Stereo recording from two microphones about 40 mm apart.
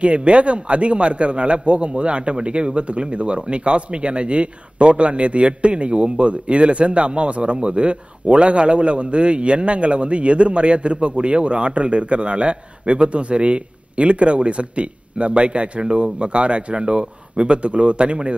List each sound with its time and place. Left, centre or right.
0.0 s a man's voice: right